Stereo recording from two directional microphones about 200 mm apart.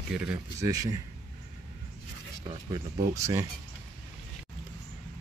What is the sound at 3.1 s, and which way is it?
Speech, 15° right (ahead or behind).